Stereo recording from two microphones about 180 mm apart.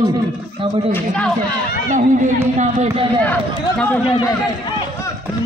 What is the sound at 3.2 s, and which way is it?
Speech, 5° left (ahead or behind).